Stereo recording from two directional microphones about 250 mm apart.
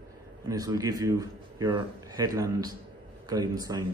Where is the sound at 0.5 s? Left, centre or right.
Centre.